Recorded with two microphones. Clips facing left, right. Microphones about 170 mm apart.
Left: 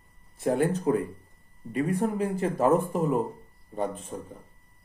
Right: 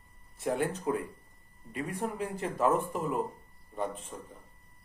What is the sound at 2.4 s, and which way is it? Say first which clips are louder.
Speech: left 4 dB; 40° left (ahead or behind).